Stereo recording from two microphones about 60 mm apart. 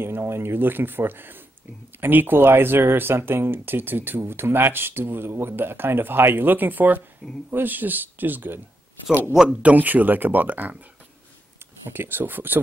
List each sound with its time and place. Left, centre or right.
0.0 s speech: right
7.2 s speech: centre
7.5 s speech: right
9.6 s speech: right
11.9 s speech: right